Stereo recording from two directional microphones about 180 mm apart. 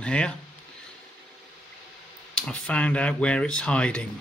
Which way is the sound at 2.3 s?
5° left (ahead or behind).